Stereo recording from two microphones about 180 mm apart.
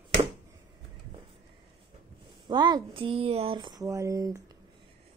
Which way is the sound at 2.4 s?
25° right (ahead or behind).